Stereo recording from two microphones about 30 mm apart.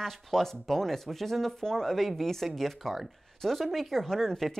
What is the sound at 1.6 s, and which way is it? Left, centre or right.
Speech, centre.